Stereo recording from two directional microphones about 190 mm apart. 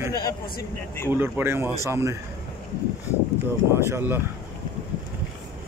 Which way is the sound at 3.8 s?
10° right (ahead or behind).